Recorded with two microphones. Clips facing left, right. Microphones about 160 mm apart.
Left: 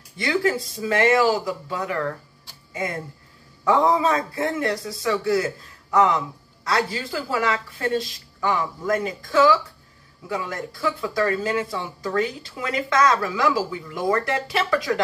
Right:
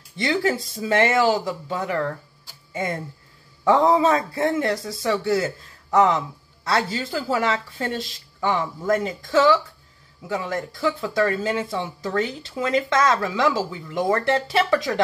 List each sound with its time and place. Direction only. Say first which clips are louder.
0.2 s speech: even; 25° right (ahead or behind)